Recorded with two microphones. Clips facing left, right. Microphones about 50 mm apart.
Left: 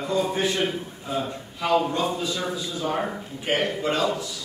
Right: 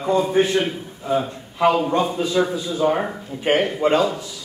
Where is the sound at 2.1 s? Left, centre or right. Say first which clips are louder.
Right 7 dB; right.